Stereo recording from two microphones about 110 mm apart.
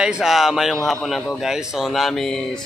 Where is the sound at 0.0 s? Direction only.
5° right (ahead or behind).